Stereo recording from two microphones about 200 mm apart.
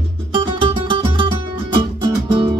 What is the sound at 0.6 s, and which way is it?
Music, 25° right (ahead or behind).